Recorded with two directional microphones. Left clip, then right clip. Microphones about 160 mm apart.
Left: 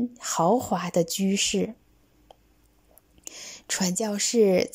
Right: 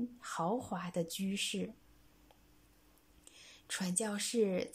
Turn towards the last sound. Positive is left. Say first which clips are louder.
# left 13 dB
turn(degrees=35)  # may be behind; listen again after turning